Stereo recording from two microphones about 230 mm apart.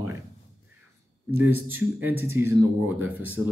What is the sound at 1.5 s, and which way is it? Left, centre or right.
Speech, right.